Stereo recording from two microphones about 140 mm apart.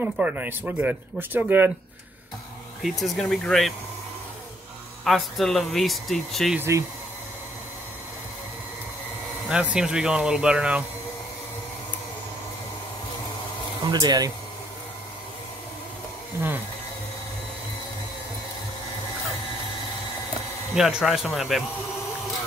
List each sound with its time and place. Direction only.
0.0 s speech: 10° right (ahead or behind)
2.8 s speech: centre (ahead or behind)
5.0 s speech: centre (ahead or behind)
6.5 s speech: 15° right (ahead or behind)
9.5 s speech: 5° right (ahead or behind)
13.8 s speech: 30° right (ahead or behind)
20.7 s speech: centre (ahead or behind)